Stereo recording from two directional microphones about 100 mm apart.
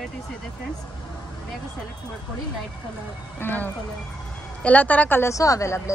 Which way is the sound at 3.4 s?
20° left (ahead or behind).